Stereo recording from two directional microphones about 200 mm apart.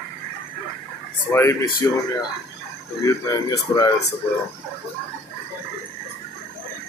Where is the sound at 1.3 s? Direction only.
15° left (ahead or behind).